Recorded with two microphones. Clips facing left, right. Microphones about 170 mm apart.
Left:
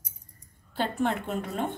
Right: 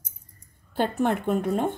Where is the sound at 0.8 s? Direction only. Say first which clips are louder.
Right 4 dB; 50° right (ahead or behind).